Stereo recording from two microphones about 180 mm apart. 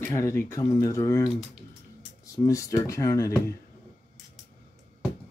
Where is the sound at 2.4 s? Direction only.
20° left (ahead or behind).